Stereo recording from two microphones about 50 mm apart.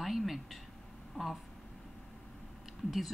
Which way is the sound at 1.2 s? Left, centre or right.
Left.